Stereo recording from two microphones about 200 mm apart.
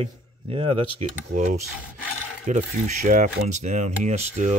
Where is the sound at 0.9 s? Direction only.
40° right (ahead or behind).